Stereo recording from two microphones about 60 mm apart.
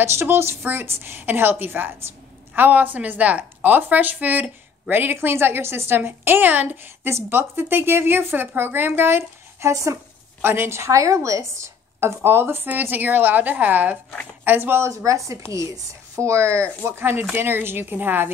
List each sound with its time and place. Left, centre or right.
0.0 s a woman's voice: right
12.2 s a woman's voice: right
15.0 s a woman's voice: right
16.8 s a woman's voice: right